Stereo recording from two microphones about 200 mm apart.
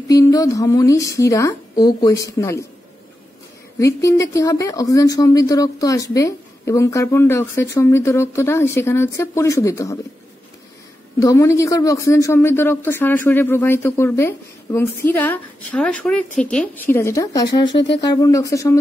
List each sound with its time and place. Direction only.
0.1 s speech: 15° left (ahead or behind)
3.8 s speech: 15° left (ahead or behind)
11.1 s speech: 15° left (ahead or behind)